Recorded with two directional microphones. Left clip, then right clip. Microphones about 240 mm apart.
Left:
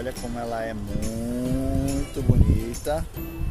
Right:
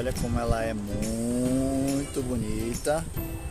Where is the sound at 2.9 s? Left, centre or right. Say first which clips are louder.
Even; centre.